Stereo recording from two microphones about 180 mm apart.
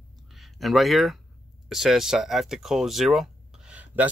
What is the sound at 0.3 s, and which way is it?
Speech, centre (ahead or behind).